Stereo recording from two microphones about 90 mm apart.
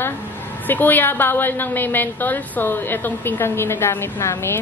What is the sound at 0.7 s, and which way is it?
A woman's voice, 20° left (ahead or behind).